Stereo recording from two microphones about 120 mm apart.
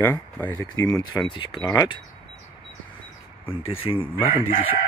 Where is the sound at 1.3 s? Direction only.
40° left (ahead or behind).